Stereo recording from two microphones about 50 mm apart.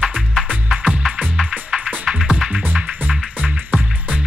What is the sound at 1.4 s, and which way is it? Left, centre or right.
Music, centre.